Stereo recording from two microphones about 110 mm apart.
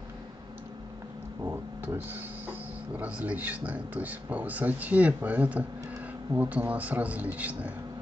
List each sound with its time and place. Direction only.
1.4 s music: 25° right (ahead or behind)
3.0 s speech: 15° right (ahead or behind)